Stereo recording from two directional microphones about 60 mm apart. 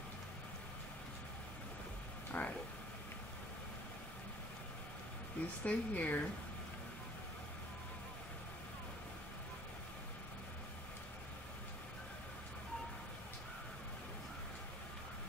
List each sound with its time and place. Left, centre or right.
2.3 s speech: left
5.6 s speech: left